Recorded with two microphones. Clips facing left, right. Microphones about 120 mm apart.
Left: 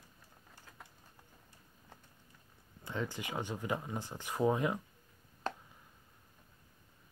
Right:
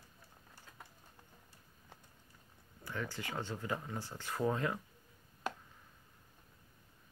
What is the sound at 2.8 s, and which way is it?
Speech, 20° left (ahead or behind).